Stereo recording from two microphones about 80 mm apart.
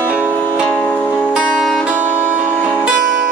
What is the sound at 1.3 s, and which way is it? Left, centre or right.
Music, centre.